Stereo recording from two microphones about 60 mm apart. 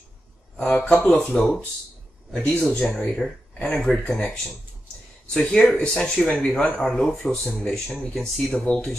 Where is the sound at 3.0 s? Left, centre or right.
Centre.